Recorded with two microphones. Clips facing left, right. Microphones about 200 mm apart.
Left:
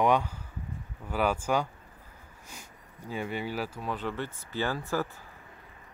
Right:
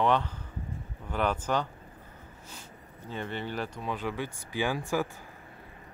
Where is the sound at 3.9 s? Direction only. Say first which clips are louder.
Even; 10° right (ahead or behind).